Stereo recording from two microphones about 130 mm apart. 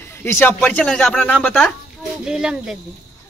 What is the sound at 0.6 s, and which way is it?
Speech, 10° left (ahead or behind).